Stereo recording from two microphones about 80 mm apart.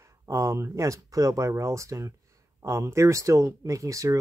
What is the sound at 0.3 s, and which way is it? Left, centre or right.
Speech, right.